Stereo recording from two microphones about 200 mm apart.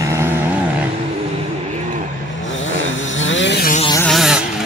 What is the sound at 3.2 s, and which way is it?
Vehicle, 70° left (ahead or behind).